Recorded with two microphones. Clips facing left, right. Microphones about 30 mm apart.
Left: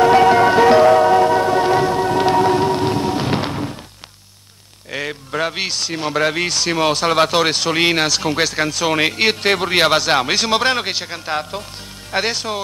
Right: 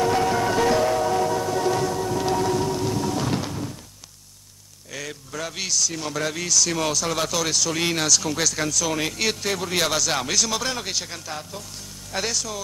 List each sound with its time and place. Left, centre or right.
0.0 s music: left
4.9 s speech: left